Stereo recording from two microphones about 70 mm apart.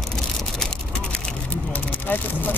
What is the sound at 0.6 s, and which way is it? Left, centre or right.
Vehicle, centre.